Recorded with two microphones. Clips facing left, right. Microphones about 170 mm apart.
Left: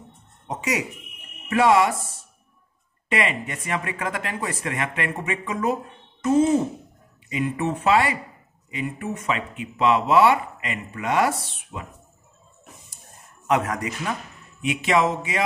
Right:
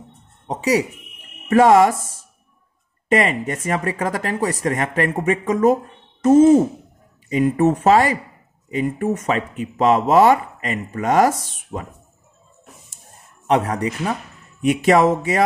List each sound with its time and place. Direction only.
0.5 s speech: 35° right (ahead or behind)
1.5 s speech: 45° right (ahead or behind)
3.1 s speech: 40° right (ahead or behind)
13.5 s speech: 30° right (ahead or behind)
14.6 s speech: 45° right (ahead or behind)